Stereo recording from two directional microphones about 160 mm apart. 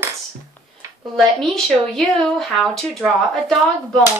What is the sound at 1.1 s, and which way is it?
Speech, centre (ahead or behind).